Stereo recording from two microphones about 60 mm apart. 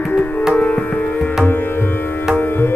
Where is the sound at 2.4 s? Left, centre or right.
Left.